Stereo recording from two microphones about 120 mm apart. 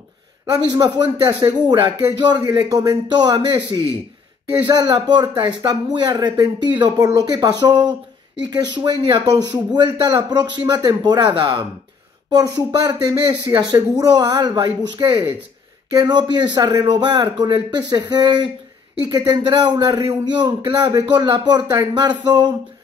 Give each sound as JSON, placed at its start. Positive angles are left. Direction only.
{"t": 0.7, "sound": "speech", "side_deg": -35}